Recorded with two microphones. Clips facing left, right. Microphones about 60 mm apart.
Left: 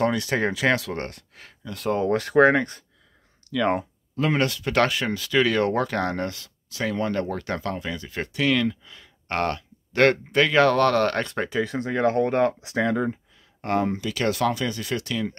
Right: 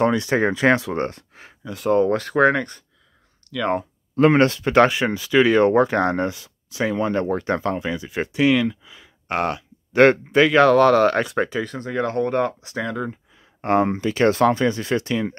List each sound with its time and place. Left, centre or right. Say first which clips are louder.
0.0 s speech: right 4 dB; right
1.7 s speech: right 5 dB; centre
4.1 s speech: right 8 dB; right; by 10.5 s centre
10.5 s speech: right 5 dB; centre
11.6 s speech: left 2 dB; centre
13.6 s speech: right 5 dB; right